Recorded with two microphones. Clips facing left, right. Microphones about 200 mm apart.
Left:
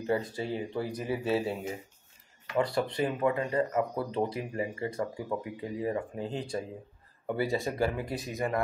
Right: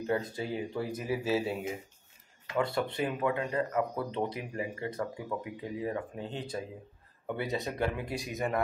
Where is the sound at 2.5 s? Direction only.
Centre (ahead or behind).